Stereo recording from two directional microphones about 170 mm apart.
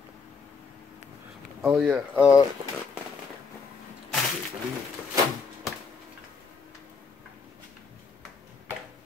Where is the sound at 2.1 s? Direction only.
15° left (ahead or behind).